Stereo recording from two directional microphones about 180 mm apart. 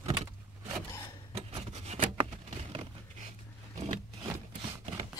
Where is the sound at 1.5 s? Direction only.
35° right (ahead or behind).